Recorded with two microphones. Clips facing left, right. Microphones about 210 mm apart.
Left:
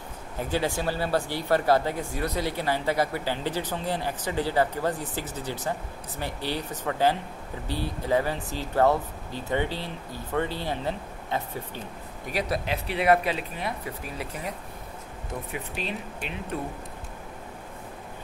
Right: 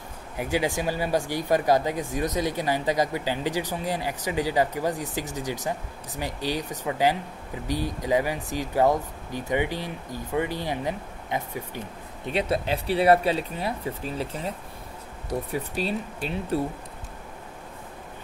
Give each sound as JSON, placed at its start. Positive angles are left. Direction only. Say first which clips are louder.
{"t": 0.4, "sound": "speech", "louder": "right 2 dB", "side_deg": -15}
{"t": 12.3, "sound": "speech", "louder": "right 3 dB", "side_deg": -25}